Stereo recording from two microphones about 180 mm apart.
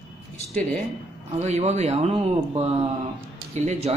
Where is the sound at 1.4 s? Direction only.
40° right (ahead or behind).